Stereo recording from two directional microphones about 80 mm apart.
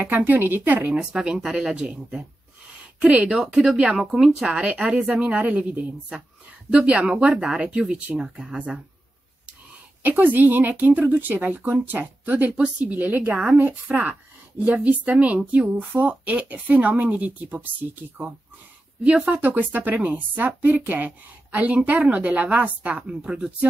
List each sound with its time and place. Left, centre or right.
0.0 s speech: right
10.0 s speech: right